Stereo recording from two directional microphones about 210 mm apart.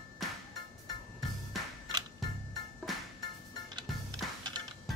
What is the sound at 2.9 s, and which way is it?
Music, centre (ahead or behind).